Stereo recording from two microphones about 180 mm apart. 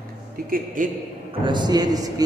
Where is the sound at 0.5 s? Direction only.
55° right (ahead or behind).